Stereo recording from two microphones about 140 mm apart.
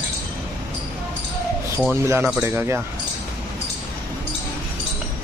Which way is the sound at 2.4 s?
20° right (ahead or behind).